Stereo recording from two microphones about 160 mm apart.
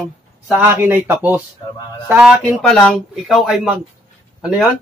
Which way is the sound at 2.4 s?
5° left (ahead or behind).